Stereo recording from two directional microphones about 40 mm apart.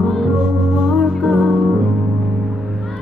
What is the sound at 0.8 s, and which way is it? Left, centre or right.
Music, centre.